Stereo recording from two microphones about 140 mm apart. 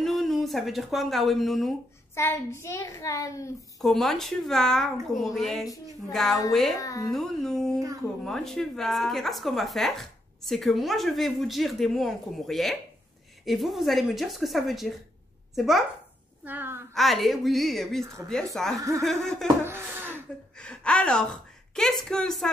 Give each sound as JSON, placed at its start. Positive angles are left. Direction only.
{"t": 0.0, "sound": "speech", "side_deg": 0}
{"t": 2.1, "sound": "a woman's voice", "side_deg": 20}
{"t": 3.8, "sound": "speech", "side_deg": 0}
{"t": 6.8, "sound": "a woman's voice", "side_deg": 25}
{"t": 7.1, "sound": "speech", "side_deg": 5}
{"t": 16.4, "sound": "a sound", "side_deg": -15}
{"t": 16.9, "sound": "speech", "side_deg": 0}
{"t": 18.0, "sound": "speech", "side_deg": -20}
{"t": 18.3, "sound": "speech", "side_deg": 5}
{"t": 18.8, "sound": "speech", "side_deg": -20}
{"t": 19.0, "sound": "speech", "side_deg": 5}
{"t": 19.6, "sound": "a sound", "side_deg": -15}
{"t": 20.5, "sound": "a woman's voice", "side_deg": 5}